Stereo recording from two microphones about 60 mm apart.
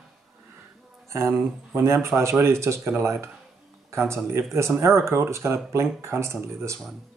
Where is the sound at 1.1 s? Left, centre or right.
Right.